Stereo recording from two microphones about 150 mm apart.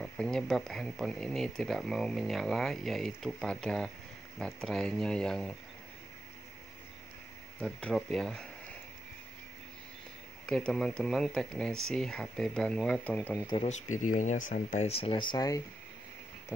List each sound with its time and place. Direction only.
0.0 s speech: 5° left (ahead or behind)
7.6 s speech: 5° left (ahead or behind)
10.4 s speech: 5° left (ahead or behind)
13.6 s speech: 55° left (ahead or behind)
14.9 s speech: 40° left (ahead or behind)